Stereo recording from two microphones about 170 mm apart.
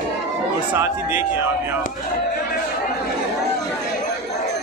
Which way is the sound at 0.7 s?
15° right (ahead or behind).